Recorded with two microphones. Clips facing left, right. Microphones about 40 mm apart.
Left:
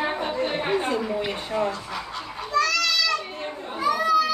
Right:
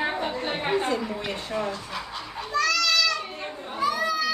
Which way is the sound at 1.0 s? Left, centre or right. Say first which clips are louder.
Left 4 dB; centre.